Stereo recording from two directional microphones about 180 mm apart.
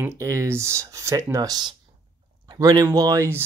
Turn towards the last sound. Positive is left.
turn(degrees=-15)  # may be behind; listen again after turning